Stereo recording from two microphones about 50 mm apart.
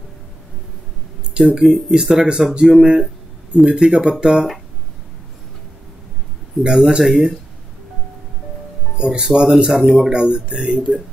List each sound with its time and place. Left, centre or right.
1.3 s speech: centre
6.6 s speech: centre
8.9 s speech: centre